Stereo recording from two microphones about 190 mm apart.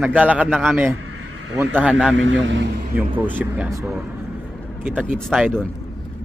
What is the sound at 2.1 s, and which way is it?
Speech, 80° right.